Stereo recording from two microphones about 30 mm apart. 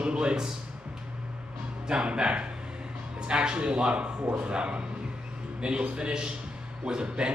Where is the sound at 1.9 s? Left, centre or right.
Right.